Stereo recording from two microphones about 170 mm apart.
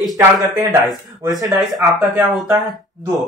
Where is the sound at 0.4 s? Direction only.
20° right (ahead or behind).